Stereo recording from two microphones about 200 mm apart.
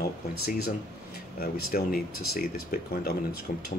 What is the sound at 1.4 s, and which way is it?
Speech, 50° left (ahead or behind).